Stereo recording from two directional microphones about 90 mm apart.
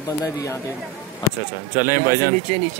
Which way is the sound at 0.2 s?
40° left (ahead or behind).